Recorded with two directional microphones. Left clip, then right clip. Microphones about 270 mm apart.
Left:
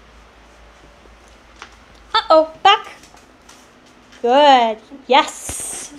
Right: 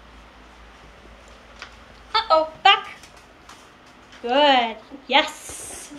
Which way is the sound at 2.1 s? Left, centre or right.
Left.